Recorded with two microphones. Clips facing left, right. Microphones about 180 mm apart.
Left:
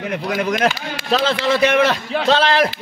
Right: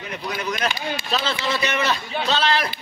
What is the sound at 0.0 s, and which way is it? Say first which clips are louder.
Speech: left 7 dB; 65° left (ahead or behind).